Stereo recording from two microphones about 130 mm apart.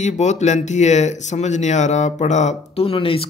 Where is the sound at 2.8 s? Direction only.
45° left (ahead or behind).